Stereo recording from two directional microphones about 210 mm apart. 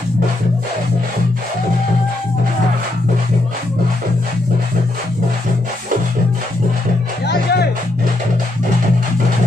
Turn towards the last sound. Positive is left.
turn(degrees=50)  # may be behind; listen again after turning